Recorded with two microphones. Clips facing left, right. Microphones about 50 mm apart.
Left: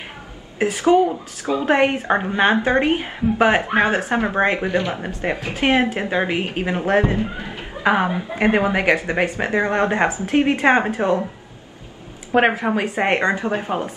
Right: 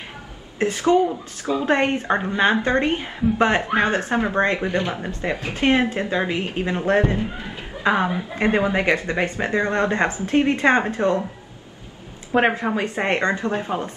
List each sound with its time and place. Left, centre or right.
0.6 s speech: centre
1.4 s a woman's voice: left
1.7 s speech: centre
3.6 s speech: left
4.3 s speech: centre
4.6 s speech: left
5.0 s a woman's voice: left
12.3 s speech: centre